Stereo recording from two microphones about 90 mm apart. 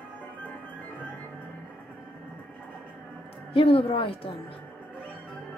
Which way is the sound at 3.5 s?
80° left.